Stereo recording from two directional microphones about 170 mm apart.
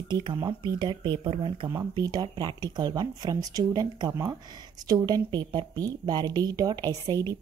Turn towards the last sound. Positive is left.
turn(degrees=-25)  # may be behind; listen again after turning